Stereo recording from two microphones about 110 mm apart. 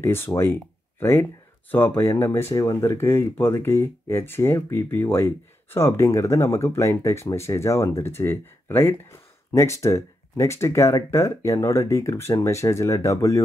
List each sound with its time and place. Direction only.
0.0 s speech: 20° left (ahead or behind)